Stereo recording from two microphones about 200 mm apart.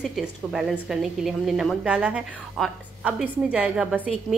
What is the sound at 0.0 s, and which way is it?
A woman's voice, centre (ahead or behind).